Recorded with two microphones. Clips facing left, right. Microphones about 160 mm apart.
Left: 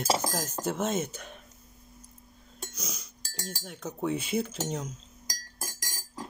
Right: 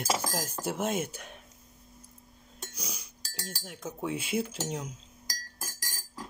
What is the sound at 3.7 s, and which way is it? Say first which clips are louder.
Speech: left 3 dB; 10° right (ahead or behind).